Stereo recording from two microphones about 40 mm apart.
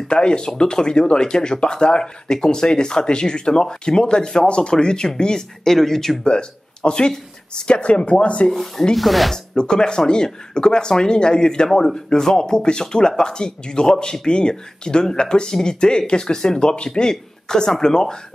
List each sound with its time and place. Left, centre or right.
0.1 s speech: left
6.2 s speech: left
8.5 s speech: centre
9.6 s speech: left